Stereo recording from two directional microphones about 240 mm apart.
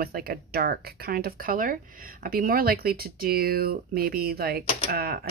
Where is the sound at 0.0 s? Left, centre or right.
Right.